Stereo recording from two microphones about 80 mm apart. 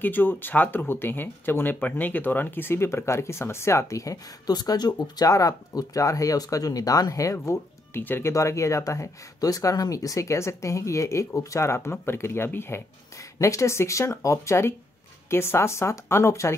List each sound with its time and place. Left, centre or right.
0.0 s speech: left
8.0 s speech: left
8.3 s speech: left